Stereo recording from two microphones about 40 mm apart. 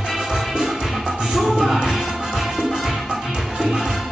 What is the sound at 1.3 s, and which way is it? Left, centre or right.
Music, centre.